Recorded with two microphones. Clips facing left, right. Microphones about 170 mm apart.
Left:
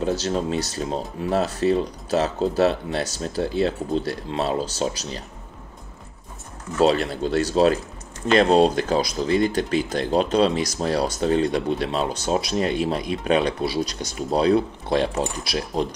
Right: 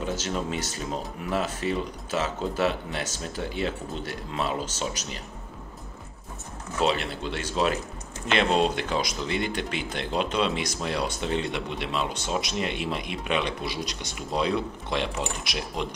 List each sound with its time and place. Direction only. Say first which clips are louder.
0.0 s speech: left 6 dB; 35° left (ahead or behind)
6.8 s speech: left 7 dB; 40° left (ahead or behind)